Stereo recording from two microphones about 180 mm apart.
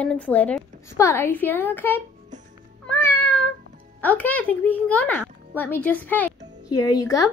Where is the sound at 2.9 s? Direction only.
5° left (ahead or behind).